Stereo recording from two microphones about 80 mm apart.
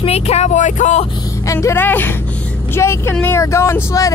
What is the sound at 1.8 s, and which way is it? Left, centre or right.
Speech, left.